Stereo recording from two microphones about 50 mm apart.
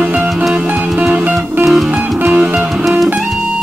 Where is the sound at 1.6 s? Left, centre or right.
Centre.